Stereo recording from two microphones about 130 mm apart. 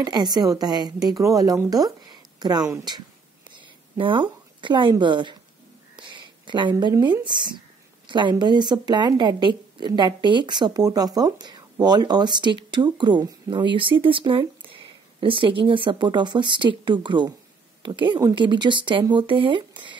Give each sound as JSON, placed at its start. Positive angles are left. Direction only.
{"t": 0.0, "sound": "a woman's voice", "side_deg": -30}
{"t": 5.9, "sound": "a sound", "side_deg": -40}
{"t": 6.8, "sound": "speech", "side_deg": -35}